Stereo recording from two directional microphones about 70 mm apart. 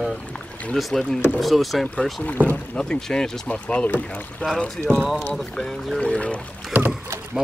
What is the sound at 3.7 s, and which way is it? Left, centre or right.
Speech, left.